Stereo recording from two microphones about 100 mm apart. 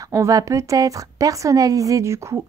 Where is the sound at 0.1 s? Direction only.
30° right (ahead or behind).